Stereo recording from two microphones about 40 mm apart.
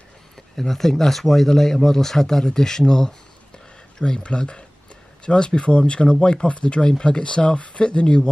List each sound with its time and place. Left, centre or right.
0.6 s speech: centre; by 8.3 s left